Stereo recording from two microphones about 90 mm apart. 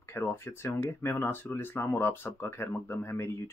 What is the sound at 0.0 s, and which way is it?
Speech, 30° left (ahead or behind).